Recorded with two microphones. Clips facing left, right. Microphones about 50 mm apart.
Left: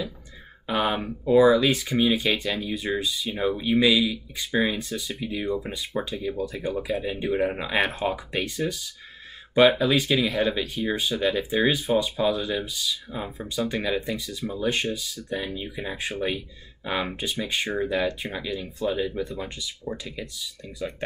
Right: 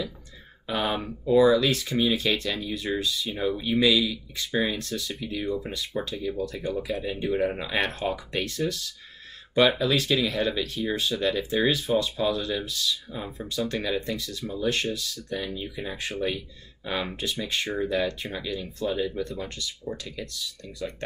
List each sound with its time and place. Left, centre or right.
0.7 s speech: centre